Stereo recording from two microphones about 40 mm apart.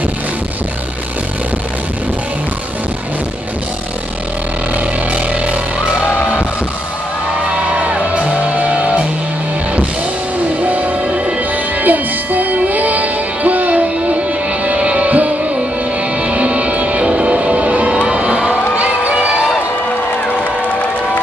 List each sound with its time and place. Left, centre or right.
4.7 s music: right
7.7 s music: right
10.6 s music: right
18.1 s a sound: right